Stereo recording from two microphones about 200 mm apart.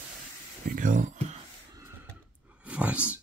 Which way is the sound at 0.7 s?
40° right (ahead or behind).